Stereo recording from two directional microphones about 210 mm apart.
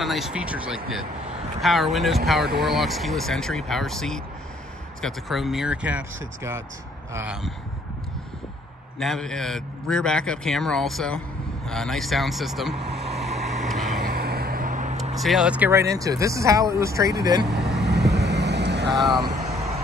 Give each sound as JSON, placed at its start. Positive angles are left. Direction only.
{"t": 0.0, "sound": "a man's voice", "side_deg": 0}
{"t": 9.0, "sound": "a man's voice", "side_deg": 0}
{"t": 13.3, "sound": "vehicle", "side_deg": -30}
{"t": 13.7, "sound": "vehicle", "side_deg": 0}
{"t": 13.9, "sound": "vehicle", "side_deg": -45}
{"t": 15.1, "sound": "speech", "side_deg": 0}
{"t": 17.6, "sound": "vehicle", "side_deg": -55}
{"t": 18.9, "sound": "a man's voice", "side_deg": 0}